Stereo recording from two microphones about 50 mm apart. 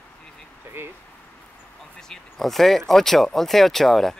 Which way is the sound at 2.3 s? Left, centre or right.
Centre.